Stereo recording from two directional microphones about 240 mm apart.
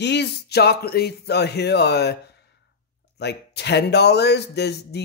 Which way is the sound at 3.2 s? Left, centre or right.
Left.